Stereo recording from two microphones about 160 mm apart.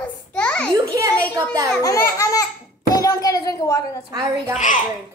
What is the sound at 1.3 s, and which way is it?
Speech, 20° right (ahead or behind).